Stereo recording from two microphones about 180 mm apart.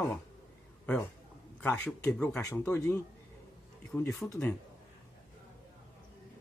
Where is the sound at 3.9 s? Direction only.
5° left (ahead or behind).